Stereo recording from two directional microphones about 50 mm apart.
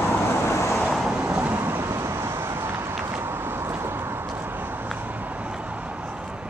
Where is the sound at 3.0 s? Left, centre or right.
Right.